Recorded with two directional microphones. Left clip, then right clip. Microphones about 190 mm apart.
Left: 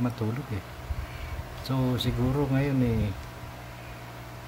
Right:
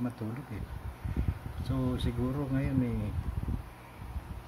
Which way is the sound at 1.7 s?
10° left (ahead or behind).